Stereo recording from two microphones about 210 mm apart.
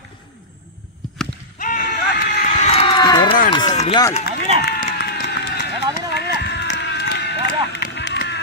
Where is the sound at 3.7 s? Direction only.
30° left (ahead or behind).